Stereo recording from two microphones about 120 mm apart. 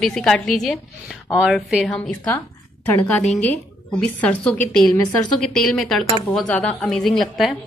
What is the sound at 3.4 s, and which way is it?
A woman's voice, 10° left (ahead or behind).